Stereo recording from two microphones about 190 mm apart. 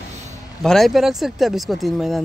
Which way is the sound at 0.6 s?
Centre (ahead or behind).